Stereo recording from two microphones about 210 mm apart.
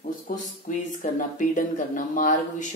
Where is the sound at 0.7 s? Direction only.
40° left (ahead or behind).